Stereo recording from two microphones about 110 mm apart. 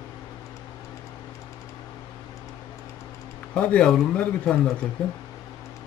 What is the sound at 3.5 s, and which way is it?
Speech, 10° left (ahead or behind).